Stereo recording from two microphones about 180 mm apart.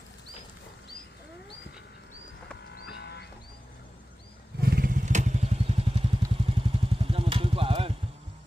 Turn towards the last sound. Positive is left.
turn(degrees=-30)  # may be behind; listen again after turning